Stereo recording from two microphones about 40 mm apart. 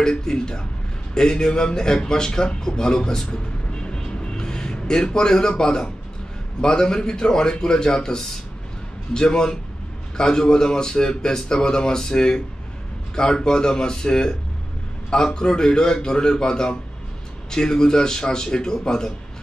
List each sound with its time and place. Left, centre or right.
0.0 s speech: centre
3.7 s vehicle: left
6.6 s a man's voice: centre